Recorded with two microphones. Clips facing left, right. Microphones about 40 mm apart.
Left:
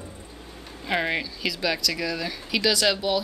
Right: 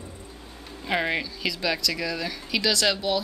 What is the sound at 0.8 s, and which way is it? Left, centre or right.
Speech, centre.